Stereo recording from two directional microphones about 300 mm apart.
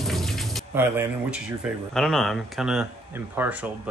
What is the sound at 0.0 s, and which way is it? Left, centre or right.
Speech, centre.